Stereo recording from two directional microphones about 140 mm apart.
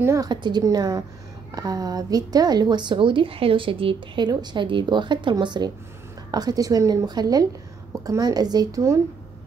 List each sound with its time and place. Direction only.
0.0 s a woman's voice: 20° right (ahead or behind)
0.3 s a woman's voice: 30° right (ahead or behind)